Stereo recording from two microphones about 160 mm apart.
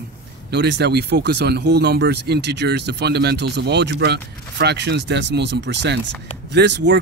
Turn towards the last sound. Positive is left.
turn(degrees=-90)